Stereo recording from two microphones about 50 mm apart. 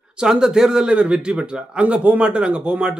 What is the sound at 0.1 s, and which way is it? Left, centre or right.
Speech, centre.